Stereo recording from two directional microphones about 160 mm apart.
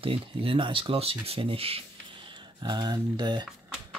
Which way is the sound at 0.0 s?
35° right (ahead or behind).